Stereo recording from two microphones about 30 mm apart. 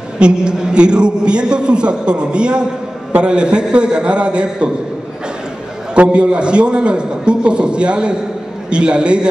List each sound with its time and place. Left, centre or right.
0.2 s a man's voice: right
6.1 s a man's voice: right